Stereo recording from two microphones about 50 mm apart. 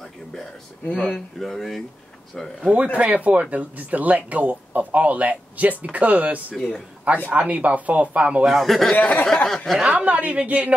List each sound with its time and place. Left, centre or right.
0.8 s speech: left
1.1 s speech: centre
2.7 s speech: right
3.0 s speech: right
6.5 s a man's voice: centre
7.2 s speech: right
8.5 s speech: centre
8.9 s speech: left
9.8 s speech: right